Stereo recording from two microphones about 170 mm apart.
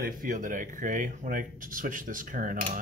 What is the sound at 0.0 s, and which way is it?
Speech, 50° right (ahead or behind).